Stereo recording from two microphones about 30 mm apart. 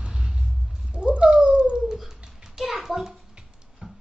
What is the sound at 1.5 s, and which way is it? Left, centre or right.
Dog, right.